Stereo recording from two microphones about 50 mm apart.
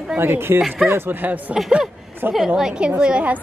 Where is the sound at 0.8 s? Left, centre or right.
Right.